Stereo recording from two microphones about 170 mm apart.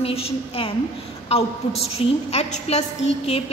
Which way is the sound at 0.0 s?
35° left (ahead or behind).